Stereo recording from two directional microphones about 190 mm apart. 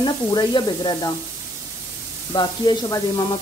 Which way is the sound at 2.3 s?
25° left (ahead or behind).